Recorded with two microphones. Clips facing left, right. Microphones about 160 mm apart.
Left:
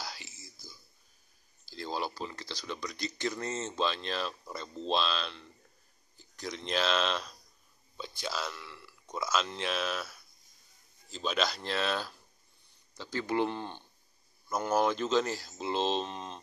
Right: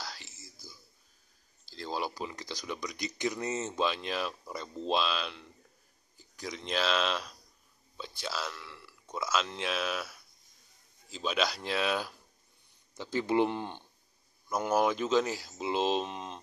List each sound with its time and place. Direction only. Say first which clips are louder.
0.0 s whispering: left 1 dB; 5° left (ahead or behind)
1.7 s a sound: even; 5° left (ahead or behind)
2.0 s speech: right 1 dB; 10° right (ahead or behind)
12.9 s speech: right 3 dB; 20° right (ahead or behind)